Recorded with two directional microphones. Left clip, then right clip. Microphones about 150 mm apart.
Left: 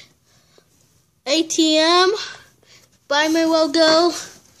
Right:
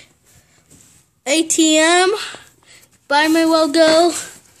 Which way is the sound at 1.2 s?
10° right (ahead or behind).